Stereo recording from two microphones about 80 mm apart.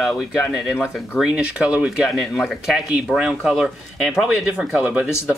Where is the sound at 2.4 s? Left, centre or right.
Centre.